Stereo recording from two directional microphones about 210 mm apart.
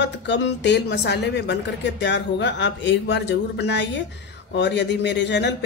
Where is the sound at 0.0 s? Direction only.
55° left (ahead or behind).